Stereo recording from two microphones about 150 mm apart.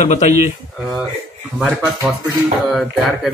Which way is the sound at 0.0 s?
50° left (ahead or behind).